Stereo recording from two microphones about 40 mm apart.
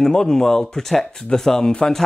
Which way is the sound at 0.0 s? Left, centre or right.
Centre.